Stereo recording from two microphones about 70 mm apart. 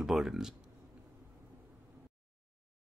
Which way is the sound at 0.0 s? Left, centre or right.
Centre.